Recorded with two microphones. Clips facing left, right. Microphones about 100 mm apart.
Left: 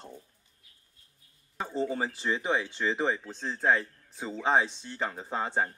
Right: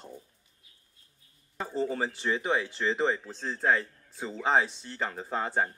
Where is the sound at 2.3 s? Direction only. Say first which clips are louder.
Even; 25° left (ahead or behind).